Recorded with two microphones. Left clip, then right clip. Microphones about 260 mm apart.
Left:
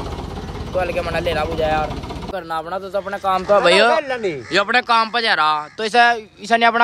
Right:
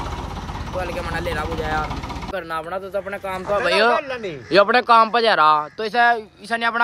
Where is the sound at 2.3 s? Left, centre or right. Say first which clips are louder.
Left 2 dB; centre.